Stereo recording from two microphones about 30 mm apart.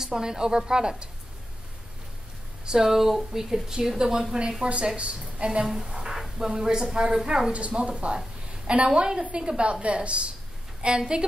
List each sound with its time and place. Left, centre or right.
0.0 s a woman's voice: centre
2.6 s speech: right
2.9 s a woman's voice: centre
4.9 s a woman's voice: right
6.0 s a sound: centre
6.4 s a woman's voice: right
7.5 s a woman's voice: right